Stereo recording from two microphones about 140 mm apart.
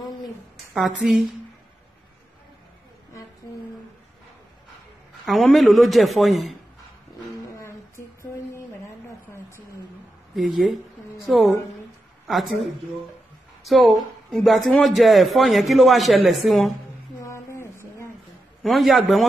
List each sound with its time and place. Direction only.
0.7 s speech: centre (ahead or behind)
5.2 s speech: centre (ahead or behind)
7.2 s a sound: 20° left (ahead or behind)
10.3 s speech: centre (ahead or behind)
13.7 s speech: centre (ahead or behind)
17.2 s a sound: 20° left (ahead or behind)
18.6 s speech: centre (ahead or behind)